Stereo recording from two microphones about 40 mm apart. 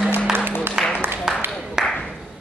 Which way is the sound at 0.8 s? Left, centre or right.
Centre.